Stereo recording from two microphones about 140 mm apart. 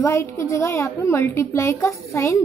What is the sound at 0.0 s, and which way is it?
A woman's voice, 20° left (ahead or behind).